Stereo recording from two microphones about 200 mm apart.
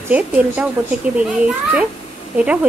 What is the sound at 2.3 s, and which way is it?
Speech, 5° right (ahead or behind).